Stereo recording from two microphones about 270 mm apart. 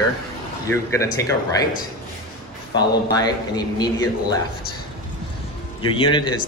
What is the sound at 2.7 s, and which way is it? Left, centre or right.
Speech, centre.